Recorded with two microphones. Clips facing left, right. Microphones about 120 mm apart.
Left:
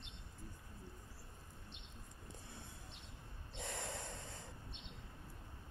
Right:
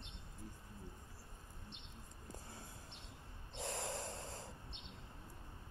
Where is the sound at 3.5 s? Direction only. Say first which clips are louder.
Right 3 dB; 35° right (ahead or behind).